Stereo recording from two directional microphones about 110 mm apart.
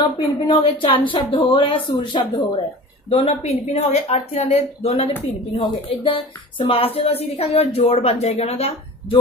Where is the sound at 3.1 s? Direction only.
70° left (ahead or behind).